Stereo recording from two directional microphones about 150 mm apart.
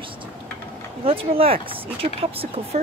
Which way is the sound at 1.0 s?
40° right (ahead or behind).